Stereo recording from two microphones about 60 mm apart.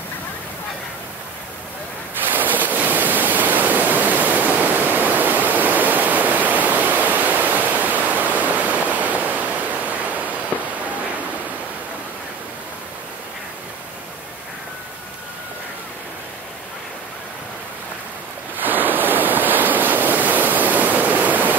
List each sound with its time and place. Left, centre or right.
2.2 s ocean: right
10.5 s fireworks: left
18.6 s waves: right